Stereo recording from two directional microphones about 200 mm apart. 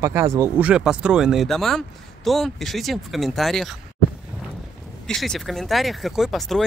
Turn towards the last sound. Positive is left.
turn(degrees=0)  # may be behind; listen again after turning